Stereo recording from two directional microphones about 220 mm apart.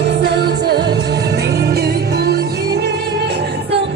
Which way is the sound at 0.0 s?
50° right (ahead or behind).